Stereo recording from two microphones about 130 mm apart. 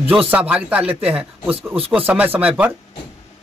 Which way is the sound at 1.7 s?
45° right (ahead or behind).